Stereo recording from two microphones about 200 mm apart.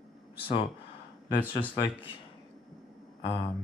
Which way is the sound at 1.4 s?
10° left (ahead or behind).